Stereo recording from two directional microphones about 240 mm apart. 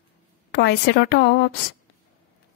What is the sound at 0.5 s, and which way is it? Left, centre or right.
Speech, left.